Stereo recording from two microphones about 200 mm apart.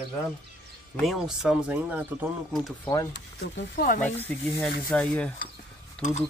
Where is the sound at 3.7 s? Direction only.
40° left (ahead or behind).